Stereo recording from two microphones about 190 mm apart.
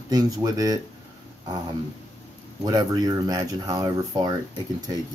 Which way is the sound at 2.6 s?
20° right (ahead or behind).